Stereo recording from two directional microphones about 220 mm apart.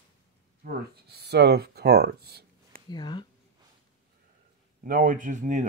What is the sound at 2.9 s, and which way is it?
Speech, 20° left (ahead or behind).